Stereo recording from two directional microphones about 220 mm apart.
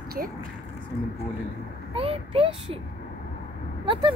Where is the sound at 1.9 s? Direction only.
25° right (ahead or behind).